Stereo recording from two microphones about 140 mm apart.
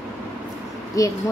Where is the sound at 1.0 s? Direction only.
25° left (ahead or behind).